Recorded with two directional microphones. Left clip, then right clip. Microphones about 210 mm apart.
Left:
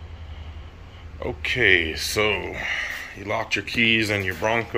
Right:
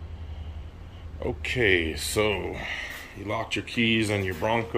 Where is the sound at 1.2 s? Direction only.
10° right (ahead or behind).